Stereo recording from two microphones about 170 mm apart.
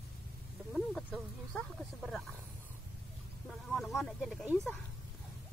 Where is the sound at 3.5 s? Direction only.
Centre (ahead or behind).